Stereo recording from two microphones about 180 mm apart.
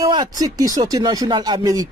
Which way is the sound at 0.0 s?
20° right (ahead or behind).